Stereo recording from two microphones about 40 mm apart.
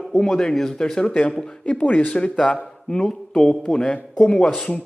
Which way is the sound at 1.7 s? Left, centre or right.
Left.